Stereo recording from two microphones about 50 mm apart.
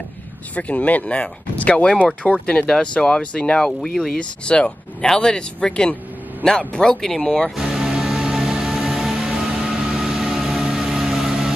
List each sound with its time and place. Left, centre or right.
0.6 s speech: left; by 7.5 s centre
7.5 s music: centre